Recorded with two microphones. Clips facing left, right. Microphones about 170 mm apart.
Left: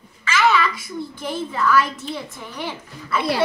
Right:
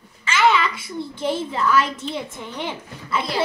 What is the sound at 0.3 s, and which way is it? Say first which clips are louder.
A child's voice: even; 25° right (ahead or behind).